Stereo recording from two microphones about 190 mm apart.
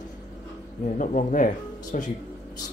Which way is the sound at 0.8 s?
40° left (ahead or behind).